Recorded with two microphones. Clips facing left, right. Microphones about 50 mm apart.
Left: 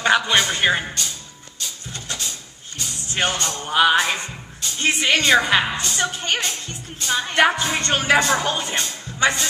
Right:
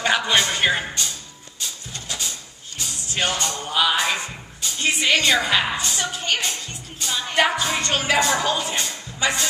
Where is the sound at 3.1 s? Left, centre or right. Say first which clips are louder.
Left 1 dB; left.